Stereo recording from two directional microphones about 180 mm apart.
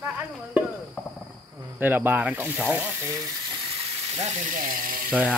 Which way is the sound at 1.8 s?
10° right (ahead or behind).